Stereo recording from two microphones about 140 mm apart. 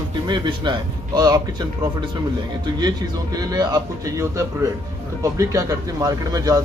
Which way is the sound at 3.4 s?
30° right (ahead or behind).